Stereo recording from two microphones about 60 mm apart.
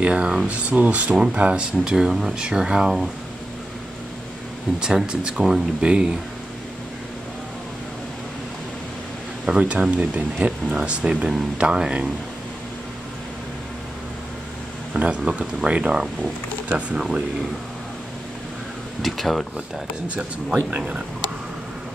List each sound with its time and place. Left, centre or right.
0.0 s speech: centre
4.7 s speech: centre
9.5 s speech: centre
15.0 s speech: right
19.0 s speech: centre